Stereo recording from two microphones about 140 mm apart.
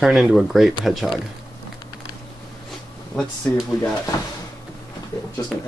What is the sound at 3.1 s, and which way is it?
Speech, 10° left (ahead or behind).